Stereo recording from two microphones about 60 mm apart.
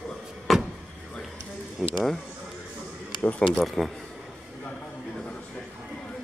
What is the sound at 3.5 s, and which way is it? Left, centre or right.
Speech, centre.